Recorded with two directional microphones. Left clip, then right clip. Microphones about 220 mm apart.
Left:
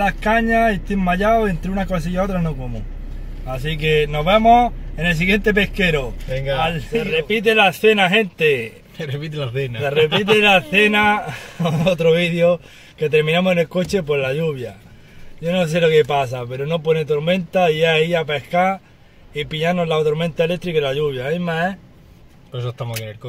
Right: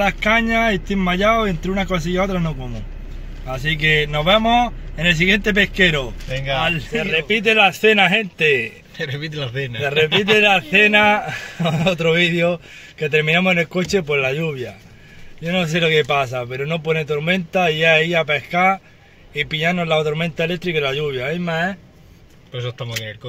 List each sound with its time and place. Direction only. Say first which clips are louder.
0.0 s speech: right 1 dB; 5° right (ahead or behind)
3.6 s speech: right 1 dB; 10° right (ahead or behind)
8.9 s speech: right 1 dB; 15° left (ahead or behind)
10.4 s speech: even; 5° right (ahead or behind)
22.5 s speech: right 1 dB; 15° left (ahead or behind)